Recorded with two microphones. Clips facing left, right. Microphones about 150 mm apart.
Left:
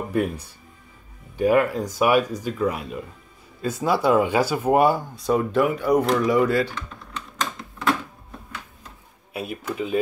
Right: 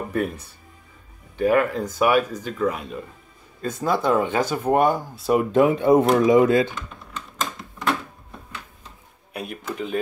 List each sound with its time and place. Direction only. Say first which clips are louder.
0.1 s speech: left 3 dB; 10° left (ahead or behind)
5.4 s speech: right 4 dB; 20° right (ahead or behind)
6.7 s typing: even; 5° right (ahead or behind)
9.3 s speech: left 2 dB; 5° left (ahead or behind)